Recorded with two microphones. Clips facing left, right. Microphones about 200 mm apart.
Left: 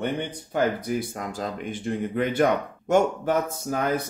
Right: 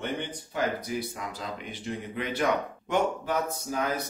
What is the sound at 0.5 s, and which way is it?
Speech, 50° left (ahead or behind).